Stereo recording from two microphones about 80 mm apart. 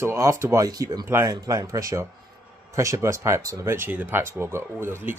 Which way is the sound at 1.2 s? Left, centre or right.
Right.